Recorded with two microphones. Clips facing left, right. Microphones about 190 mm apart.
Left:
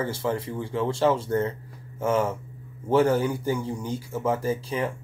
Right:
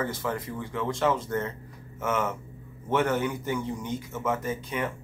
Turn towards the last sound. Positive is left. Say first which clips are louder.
# left 4 dB
turn(degrees=30)  # may be behind; listen again after turning